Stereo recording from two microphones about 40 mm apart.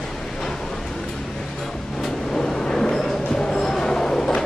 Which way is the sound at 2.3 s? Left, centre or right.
Centre.